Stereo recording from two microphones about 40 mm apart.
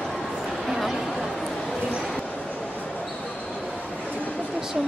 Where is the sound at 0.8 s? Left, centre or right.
Centre.